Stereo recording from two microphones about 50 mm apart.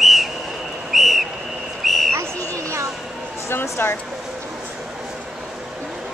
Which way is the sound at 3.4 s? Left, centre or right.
Left.